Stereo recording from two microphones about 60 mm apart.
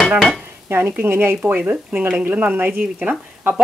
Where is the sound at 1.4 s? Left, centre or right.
Right.